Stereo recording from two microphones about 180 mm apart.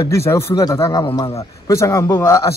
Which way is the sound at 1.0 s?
30° left (ahead or behind).